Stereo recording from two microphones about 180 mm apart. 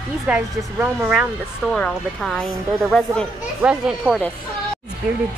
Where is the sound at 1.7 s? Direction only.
5° left (ahead or behind).